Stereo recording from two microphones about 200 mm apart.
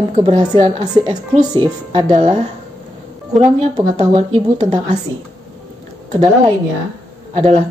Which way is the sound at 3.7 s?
25° right (ahead or behind).